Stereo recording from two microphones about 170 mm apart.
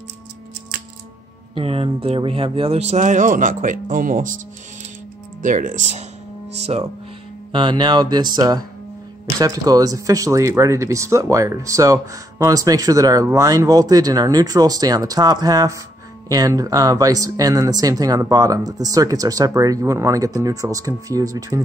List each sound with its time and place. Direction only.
1.5 s speech: 35° right (ahead or behind); by 4.4 s 50° right (ahead or behind)
5.4 s speech: 50° right (ahead or behind)
7.5 s speech: 30° right (ahead or behind)